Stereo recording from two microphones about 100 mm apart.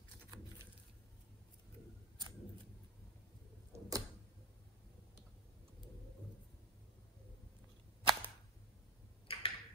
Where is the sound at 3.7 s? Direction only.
35° right (ahead or behind).